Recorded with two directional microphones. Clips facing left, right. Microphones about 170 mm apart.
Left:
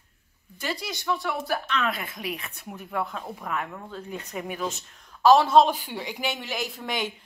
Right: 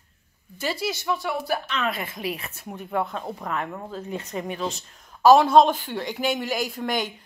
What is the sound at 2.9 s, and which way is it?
Speech, 30° right (ahead or behind).